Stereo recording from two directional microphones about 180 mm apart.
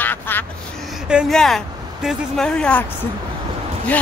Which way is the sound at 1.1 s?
Centre (ahead or behind).